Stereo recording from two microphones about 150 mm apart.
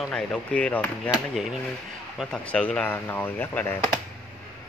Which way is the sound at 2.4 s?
10° left (ahead or behind).